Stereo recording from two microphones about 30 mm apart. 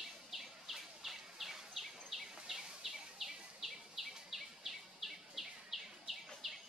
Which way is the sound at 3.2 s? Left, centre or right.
Centre.